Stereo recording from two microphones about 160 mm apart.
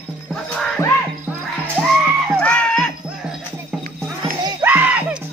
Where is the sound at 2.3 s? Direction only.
5° left (ahead or behind).